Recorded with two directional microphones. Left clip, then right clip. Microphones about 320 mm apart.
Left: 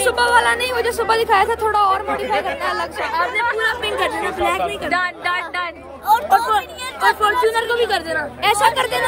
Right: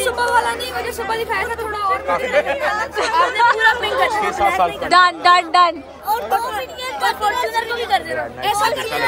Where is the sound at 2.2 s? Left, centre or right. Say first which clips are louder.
Right 3 dB; right.